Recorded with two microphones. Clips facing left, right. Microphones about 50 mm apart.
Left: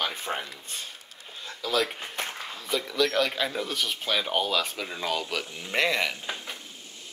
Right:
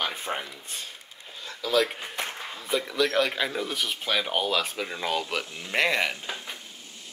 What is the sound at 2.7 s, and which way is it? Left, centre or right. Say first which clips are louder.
Speech: right 1 dB; centre.